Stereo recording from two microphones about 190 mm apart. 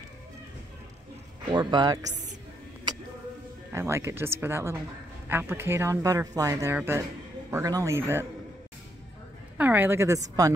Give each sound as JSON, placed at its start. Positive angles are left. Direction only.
{"t": 1.5, "sound": "speech", "side_deg": -25}
{"t": 3.7, "sound": "speech", "side_deg": -15}
{"t": 9.6, "sound": "a woman's voice", "side_deg": -10}